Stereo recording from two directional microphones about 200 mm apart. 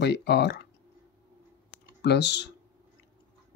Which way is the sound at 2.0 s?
60° left (ahead or behind).